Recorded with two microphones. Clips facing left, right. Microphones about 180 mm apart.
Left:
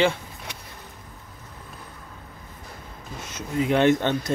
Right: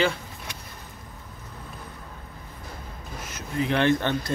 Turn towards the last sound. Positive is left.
turn(degrees=20)  # may be behind; listen again after turning